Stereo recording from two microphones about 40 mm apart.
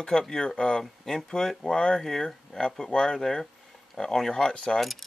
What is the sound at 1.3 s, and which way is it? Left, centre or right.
Speech, centre.